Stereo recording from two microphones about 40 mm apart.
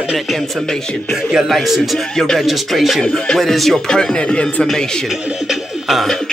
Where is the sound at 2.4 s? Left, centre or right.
Centre.